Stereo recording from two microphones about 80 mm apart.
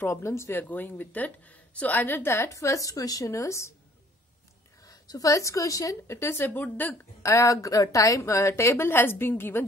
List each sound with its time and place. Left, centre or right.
0.0 s a woman's voice: left
0.7 s a woman's voice: left
4.8 s a woman's voice: left
7.2 s a woman's voice: left